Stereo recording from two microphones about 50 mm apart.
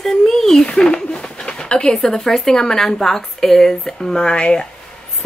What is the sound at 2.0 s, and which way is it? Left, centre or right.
A woman's voice, centre.